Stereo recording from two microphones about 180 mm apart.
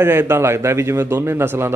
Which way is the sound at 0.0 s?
10° right (ahead or behind).